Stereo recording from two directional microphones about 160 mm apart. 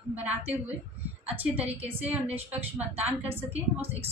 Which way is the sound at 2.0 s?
10° right (ahead or behind).